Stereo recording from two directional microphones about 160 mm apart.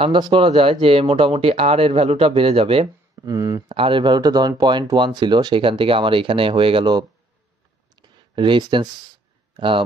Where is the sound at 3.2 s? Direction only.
20° right (ahead or behind).